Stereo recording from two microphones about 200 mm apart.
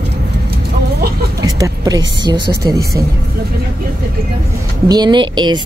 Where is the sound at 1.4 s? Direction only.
20° right (ahead or behind).